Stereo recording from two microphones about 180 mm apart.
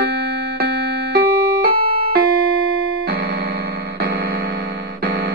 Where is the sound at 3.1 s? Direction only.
60° right (ahead or behind).